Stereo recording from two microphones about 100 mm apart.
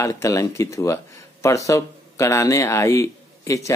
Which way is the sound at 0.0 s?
30° left (ahead or behind).